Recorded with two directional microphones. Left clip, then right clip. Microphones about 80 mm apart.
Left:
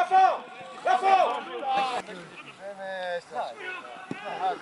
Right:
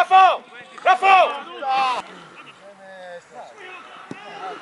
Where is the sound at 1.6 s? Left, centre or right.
Right.